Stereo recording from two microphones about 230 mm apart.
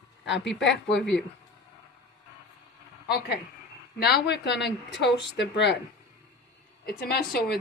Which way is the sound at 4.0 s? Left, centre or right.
Left.